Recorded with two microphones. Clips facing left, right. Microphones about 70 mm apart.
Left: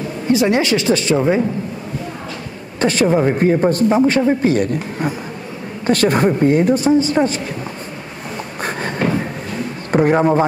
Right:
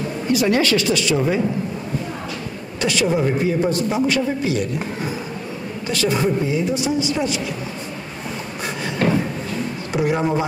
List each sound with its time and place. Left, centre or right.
0.3 s speech: left
2.8 s a man's voice: left
5.9 s a woman's voice: left
8.6 s a sound: left
9.9 s a woman's voice: left